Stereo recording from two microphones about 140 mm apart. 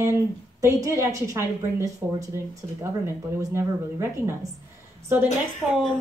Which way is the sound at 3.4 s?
20° right (ahead or behind).